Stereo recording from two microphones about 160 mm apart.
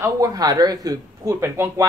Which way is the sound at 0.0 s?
20° right (ahead or behind).